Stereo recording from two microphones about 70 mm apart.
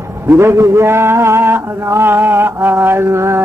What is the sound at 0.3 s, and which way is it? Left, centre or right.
Mantra, right.